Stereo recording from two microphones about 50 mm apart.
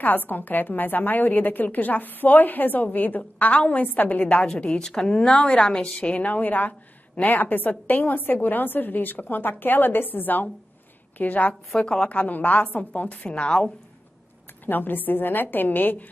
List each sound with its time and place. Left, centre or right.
0.0 s a woman's voice: left
4.4 s a woman's voice: centre; by 11.5 s left
11.8 s a woman's voice: centre
12.1 s a woman's voice: left
14.7 s a woman's voice: left